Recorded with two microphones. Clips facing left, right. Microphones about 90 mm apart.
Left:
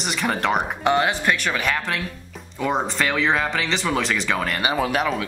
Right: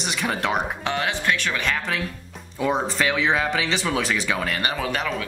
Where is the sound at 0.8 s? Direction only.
15° left (ahead or behind).